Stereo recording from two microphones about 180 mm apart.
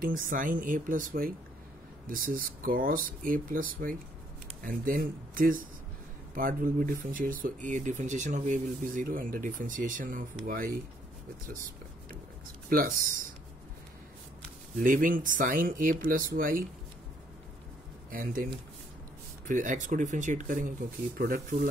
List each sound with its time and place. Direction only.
0.0 s speech: 50° right (ahead or behind)
12.6 s speech: 50° right (ahead or behind)
14.8 s speech: 50° right (ahead or behind)
18.1 s speech: 50° right (ahead or behind)